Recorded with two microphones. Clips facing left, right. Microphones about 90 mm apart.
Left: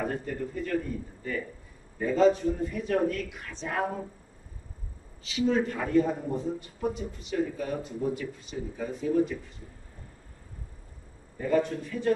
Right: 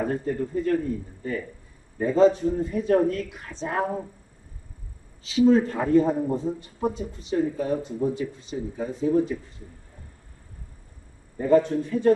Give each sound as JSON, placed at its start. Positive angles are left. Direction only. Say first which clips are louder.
{"t": 0.0, "sound": "a man's voice", "louder": "right 5 dB", "side_deg": -30}
{"t": 5.2, "sound": "a man's voice", "louder": "right 7 dB", "side_deg": -35}
{"t": 11.3, "sound": "a man's voice", "louder": "right 7 dB", "side_deg": -30}